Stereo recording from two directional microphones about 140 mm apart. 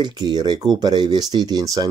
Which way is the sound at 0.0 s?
30° right (ahead or behind).